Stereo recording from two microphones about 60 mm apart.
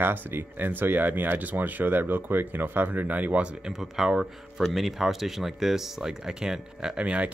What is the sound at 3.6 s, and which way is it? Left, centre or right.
Speech, centre.